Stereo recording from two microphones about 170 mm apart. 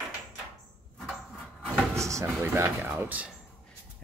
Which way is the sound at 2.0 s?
15° right (ahead or behind).